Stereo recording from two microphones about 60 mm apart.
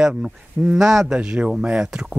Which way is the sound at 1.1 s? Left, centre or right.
Centre.